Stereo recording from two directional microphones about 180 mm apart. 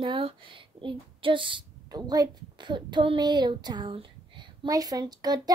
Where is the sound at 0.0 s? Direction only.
25° right (ahead or behind).